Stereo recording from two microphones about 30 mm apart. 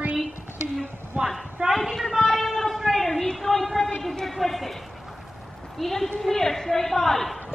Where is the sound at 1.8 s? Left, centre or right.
Centre.